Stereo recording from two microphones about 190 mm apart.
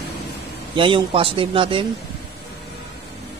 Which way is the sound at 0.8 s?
25° right (ahead or behind).